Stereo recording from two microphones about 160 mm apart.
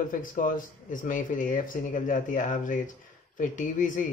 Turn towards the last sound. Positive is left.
turn(degrees=55)  # may be behind; listen again after turning